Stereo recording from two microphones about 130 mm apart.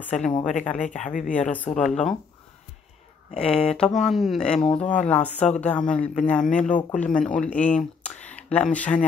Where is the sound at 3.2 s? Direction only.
50° left (ahead or behind).